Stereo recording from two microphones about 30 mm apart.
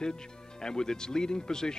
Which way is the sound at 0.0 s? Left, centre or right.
Left.